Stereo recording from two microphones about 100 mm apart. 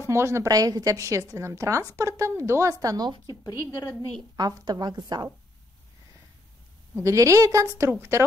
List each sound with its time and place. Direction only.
0.0 s a woman's voice: 25° right (ahead or behind)
2.8 s a woman's voice: 40° right (ahead or behind)
3.3 s speech: 40° left (ahead or behind)
4.4 s a woman's voice: 40° right (ahead or behind)
7.0 s a woman's voice: 30° right (ahead or behind)